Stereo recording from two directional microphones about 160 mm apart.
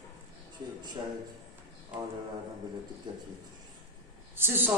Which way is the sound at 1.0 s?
20° right (ahead or behind).